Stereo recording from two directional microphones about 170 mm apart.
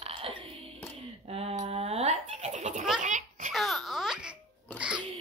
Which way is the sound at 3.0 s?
45° right (ahead or behind).